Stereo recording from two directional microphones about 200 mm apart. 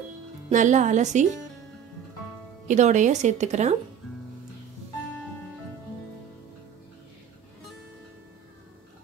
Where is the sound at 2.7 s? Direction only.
35° right (ahead or behind).